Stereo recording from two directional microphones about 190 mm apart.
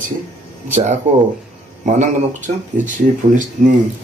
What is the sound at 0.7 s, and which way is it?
Speech, 40° right (ahead or behind).